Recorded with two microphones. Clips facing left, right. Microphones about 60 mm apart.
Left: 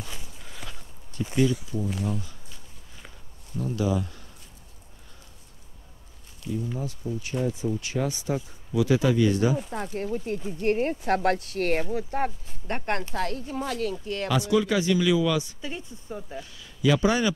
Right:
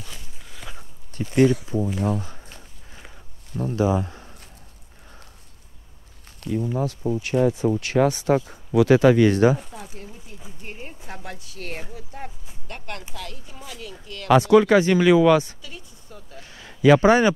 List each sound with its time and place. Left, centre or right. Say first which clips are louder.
0.4 s walk: left 1 dB; centre
1.3 s speech: right 6 dB; right
2.0 s a sound: right 6 dB; right
3.5 s speech: right 5 dB; right
6.4 s speech: right 6 dB; right
6.8 s speech: right 8 dB; right
9.7 s speech: left 9 dB; left
10.6 s speech: left 15 dB; left
12.6 s speech: left 7 dB; left
14.2 s speech: right 9 dB; right
15.6 s speech: left 6 dB; left
16.5 s a man's voice: right 8 dB; right